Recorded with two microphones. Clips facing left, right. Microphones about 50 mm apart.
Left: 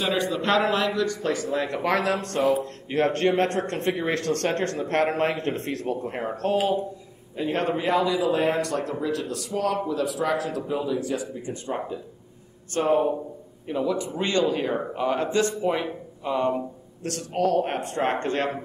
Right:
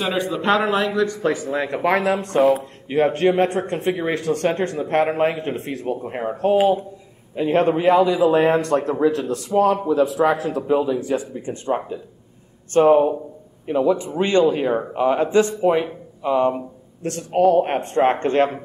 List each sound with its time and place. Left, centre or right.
0.0 s a man's voice: centre
2.9 s a man's voice: centre; by 9.2 s right
9.5 s a man's voice: right
12.8 s a man's voice: centre
17.0 s a man's voice: right